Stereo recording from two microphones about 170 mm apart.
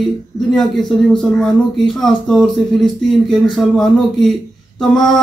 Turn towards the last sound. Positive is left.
turn(degrees=0)  # may be behind; listen again after turning